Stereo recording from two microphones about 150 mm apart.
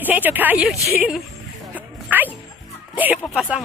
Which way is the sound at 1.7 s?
10° right (ahead or behind).